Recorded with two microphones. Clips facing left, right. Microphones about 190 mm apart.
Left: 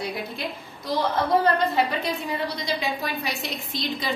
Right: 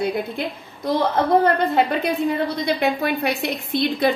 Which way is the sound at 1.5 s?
55° right (ahead or behind).